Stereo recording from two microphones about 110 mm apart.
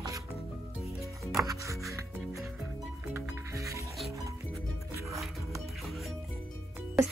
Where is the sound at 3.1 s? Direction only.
30° right (ahead or behind).